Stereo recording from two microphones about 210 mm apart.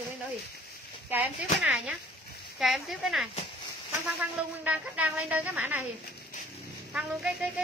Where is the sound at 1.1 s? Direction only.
5° right (ahead or behind).